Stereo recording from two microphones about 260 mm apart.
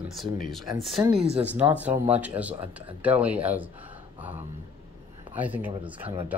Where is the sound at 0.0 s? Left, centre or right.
Centre.